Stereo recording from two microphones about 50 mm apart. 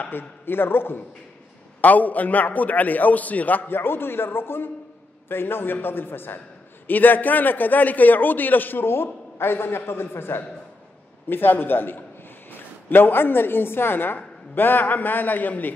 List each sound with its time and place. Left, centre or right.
0.1 s a man's voice: left
1.8 s a man's voice: left